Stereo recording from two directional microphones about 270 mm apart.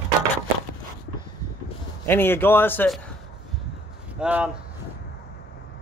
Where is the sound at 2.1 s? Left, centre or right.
Centre.